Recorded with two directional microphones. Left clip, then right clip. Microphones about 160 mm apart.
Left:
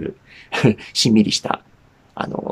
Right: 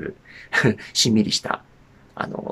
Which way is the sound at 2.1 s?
10° left (ahead or behind).